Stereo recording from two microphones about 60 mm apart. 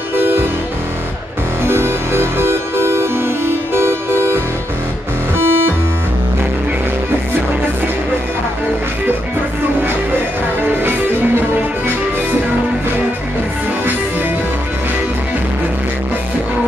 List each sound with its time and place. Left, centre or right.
0.1 s music: right
1.6 s music: right
5.4 s music: right
10.6 s music: right